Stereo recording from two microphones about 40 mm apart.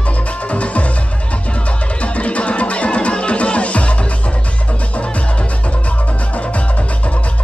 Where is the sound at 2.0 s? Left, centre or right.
Left.